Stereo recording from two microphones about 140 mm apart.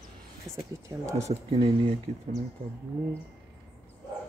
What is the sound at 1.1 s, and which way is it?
Speech, 50° right (ahead or behind).